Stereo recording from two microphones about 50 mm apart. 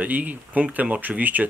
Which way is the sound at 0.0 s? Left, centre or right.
Right.